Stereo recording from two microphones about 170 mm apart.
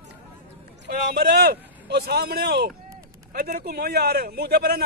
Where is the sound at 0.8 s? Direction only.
65° right (ahead or behind).